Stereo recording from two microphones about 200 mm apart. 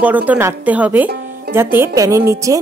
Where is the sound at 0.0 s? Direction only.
10° right (ahead or behind).